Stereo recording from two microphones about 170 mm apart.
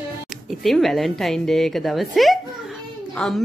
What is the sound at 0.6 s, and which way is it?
A woman's voice, centre (ahead or behind).